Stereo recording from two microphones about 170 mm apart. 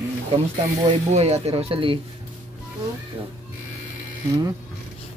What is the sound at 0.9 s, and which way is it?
Speech, 40° right (ahead or behind).